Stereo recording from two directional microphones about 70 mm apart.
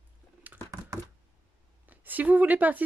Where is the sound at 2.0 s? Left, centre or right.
Right.